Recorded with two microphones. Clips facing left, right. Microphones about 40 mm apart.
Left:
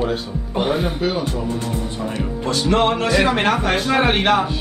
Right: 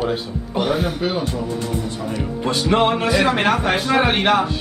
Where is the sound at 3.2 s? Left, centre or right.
Centre.